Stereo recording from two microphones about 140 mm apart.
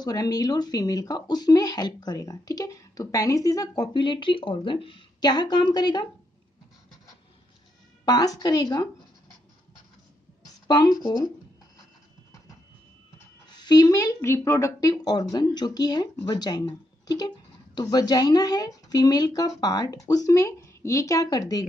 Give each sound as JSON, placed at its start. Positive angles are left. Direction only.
{"t": 0.0, "sound": "speech", "side_deg": 30}
{"t": 8.0, "sound": "speech", "side_deg": 30}
{"t": 10.7, "sound": "speech", "side_deg": 30}
{"t": 13.5, "sound": "speech", "side_deg": 30}